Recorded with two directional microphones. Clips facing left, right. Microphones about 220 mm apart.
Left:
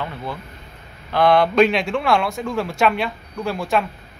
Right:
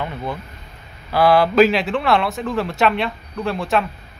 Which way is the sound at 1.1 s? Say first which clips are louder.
Right 1 dB; 5° right (ahead or behind).